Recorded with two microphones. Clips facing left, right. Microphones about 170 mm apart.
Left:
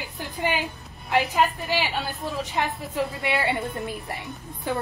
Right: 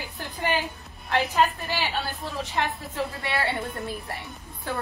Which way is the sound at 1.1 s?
15° left (ahead or behind).